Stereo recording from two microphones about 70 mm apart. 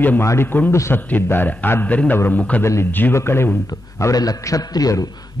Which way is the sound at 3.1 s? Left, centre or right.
Left.